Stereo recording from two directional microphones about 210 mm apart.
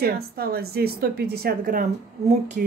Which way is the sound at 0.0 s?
45° right (ahead or behind).